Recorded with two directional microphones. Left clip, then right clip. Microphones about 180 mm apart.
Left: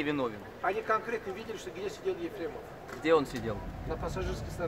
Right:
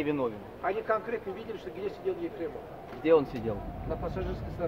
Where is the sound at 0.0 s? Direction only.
20° right (ahead or behind).